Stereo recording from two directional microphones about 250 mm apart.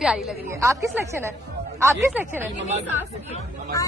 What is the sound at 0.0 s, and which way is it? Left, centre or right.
A woman's voice, centre.